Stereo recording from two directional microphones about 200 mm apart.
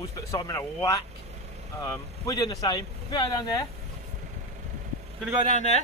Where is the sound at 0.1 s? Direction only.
15° left (ahead or behind).